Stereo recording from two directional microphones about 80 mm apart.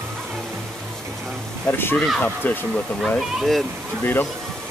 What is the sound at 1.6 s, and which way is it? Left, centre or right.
Speech, left.